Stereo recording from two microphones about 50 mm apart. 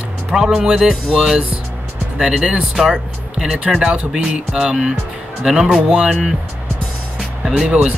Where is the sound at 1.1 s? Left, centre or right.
Centre.